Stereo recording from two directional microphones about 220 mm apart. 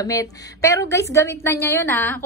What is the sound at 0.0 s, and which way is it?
A woman's voice, 15° left (ahead or behind).